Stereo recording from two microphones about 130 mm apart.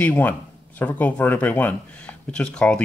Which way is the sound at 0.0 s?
15° left (ahead or behind).